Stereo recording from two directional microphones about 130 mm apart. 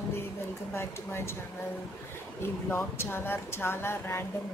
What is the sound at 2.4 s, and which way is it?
Speech, 20° left (ahead or behind).